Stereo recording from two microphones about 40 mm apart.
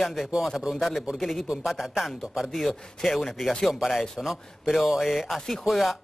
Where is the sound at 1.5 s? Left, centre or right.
Centre.